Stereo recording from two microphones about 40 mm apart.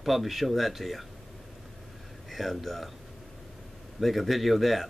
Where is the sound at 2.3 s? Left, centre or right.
Centre.